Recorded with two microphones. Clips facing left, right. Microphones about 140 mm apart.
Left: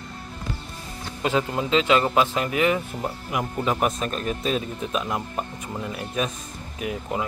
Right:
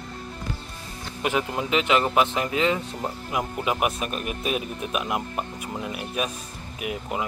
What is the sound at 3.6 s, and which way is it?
Speech, 10° right (ahead or behind).